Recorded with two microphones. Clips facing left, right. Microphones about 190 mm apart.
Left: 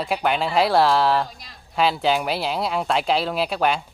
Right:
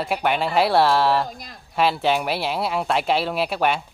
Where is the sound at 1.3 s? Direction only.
50° right (ahead or behind).